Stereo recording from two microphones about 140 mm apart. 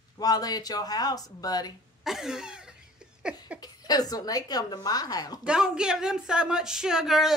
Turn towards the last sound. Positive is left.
turn(degrees=0)  # may be behind; listen again after turning